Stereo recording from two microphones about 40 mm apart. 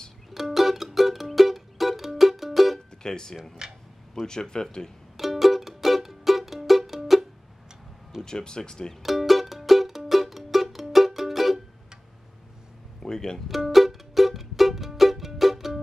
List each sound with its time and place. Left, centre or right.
0.3 s music: centre
3.0 s speech: centre
3.6 s a sound: centre
4.1 s speech: centre
5.1 s music: centre
8.2 s speech: centre
9.0 s music: centre
13.0 s music: centre
13.5 s music: centre